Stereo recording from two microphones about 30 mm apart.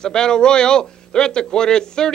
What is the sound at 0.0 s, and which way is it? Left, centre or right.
A man's voice, left.